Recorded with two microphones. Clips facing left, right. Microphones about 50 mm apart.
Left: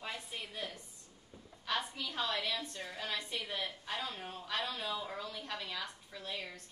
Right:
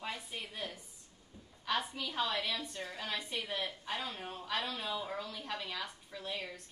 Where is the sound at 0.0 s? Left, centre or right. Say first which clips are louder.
Right 1 dB; centre.